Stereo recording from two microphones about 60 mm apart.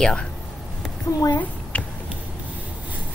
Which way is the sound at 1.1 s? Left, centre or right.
Left.